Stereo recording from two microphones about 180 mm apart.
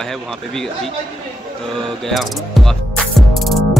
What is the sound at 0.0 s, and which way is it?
Speech, centre (ahead or behind).